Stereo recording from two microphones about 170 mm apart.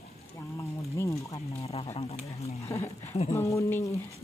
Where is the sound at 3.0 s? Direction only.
40° left (ahead or behind).